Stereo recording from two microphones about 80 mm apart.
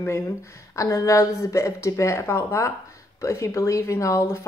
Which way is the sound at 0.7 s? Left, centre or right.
Left.